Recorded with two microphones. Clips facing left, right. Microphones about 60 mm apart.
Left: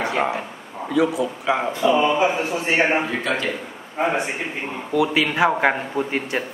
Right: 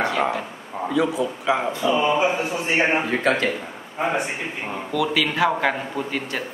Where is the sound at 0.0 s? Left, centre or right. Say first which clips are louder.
Even; centre.